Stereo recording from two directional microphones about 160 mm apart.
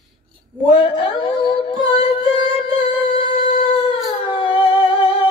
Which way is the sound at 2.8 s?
40° left (ahead or behind).